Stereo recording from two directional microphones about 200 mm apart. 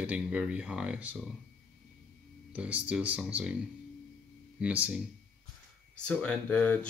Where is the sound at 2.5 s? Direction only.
5° right (ahead or behind).